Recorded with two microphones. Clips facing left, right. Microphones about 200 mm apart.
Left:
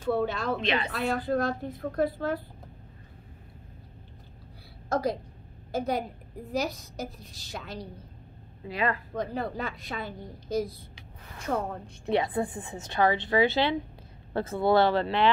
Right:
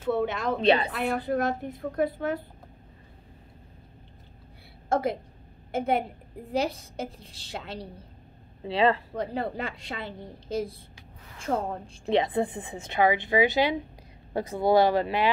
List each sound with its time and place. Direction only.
0.1 s a woman's voice: 20° right (ahead or behind)
0.6 s a woman's voice: 35° right (ahead or behind)
0.9 s a woman's voice: 15° right (ahead or behind)
4.8 s a sound: 25° right (ahead or behind)
5.7 s a woman's voice: 25° right (ahead or behind)
11.8 s a woman's voice: 20° right (ahead or behind)